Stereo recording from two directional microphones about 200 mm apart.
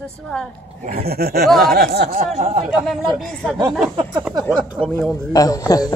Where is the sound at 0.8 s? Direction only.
50° right (ahead or behind).